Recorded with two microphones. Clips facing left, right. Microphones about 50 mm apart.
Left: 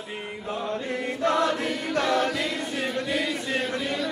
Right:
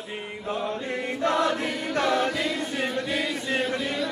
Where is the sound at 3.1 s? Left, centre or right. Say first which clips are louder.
Even; centre.